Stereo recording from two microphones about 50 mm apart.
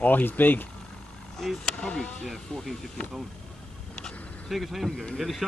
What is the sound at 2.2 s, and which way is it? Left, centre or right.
Speech, centre.